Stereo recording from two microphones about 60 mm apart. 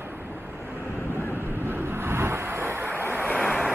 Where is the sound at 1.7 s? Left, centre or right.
Right.